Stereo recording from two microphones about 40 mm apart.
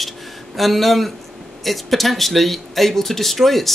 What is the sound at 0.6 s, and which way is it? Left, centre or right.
Speech, centre.